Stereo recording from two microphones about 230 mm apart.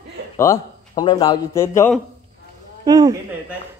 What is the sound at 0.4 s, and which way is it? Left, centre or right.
A man's voice, centre.